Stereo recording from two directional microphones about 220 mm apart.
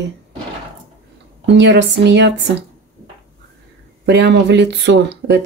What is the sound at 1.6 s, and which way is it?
Speech, 55° right (ahead or behind).